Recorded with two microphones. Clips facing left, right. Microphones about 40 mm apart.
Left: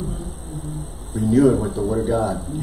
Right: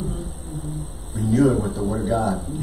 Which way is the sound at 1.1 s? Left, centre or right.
Centre.